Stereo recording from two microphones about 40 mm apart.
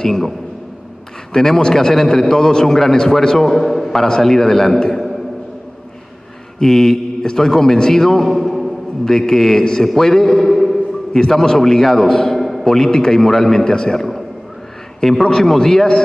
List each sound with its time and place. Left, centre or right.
0.0 s a man's voice: centre
1.3 s a man's voice: centre
6.6 s a man's voice: centre
11.1 s a man's voice: centre
12.4 s a sound: centre
12.6 s a man's voice: centre